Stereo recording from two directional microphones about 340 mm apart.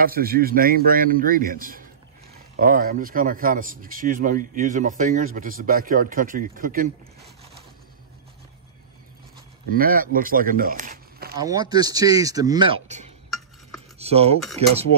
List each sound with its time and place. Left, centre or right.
0.0 s a man's voice: right
9.7 s speech: right
11.4 s speech: centre